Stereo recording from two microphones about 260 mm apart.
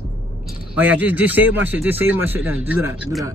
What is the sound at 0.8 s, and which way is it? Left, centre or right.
Speech, centre.